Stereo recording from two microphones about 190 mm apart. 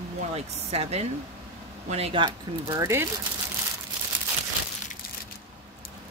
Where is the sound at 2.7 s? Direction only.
15° right (ahead or behind).